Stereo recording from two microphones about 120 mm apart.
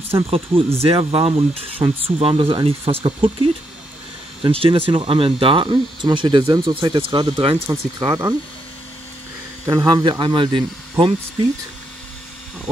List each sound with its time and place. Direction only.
0.1 s speech: 55° right (ahead or behind)
8.0 s speech: 30° right (ahead or behind)
9.7 s speech: 35° right (ahead or behind)